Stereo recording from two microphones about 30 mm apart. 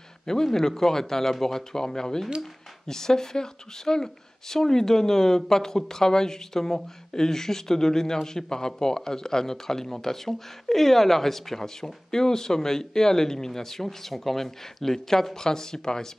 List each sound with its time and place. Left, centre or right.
0.3 s speech: centre